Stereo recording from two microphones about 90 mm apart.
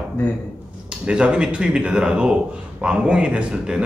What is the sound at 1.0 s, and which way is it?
A man's voice, 10° right (ahead or behind).